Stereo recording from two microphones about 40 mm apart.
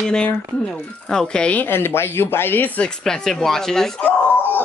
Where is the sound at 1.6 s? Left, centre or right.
Left.